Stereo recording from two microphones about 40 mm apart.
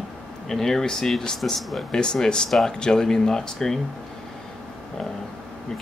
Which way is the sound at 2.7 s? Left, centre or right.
Centre.